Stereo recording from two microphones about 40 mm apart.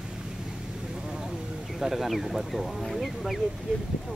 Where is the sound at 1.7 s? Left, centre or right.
Centre.